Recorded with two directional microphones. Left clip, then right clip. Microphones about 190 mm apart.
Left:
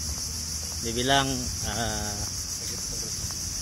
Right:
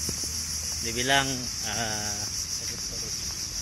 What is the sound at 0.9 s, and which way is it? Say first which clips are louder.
Speech: left 1 dB; 20° left (ahead or behind).